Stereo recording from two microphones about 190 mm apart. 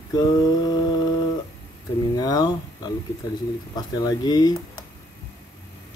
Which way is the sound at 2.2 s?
20° left (ahead or behind).